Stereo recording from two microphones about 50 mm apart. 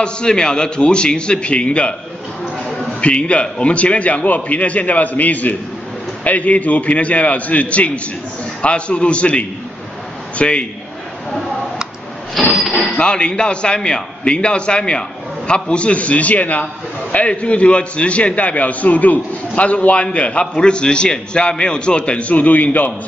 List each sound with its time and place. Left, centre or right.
0.0 s a man's voice: centre
3.0 s a man's voice: left
12.4 s a sound: centre
12.9 s a man's voice: centre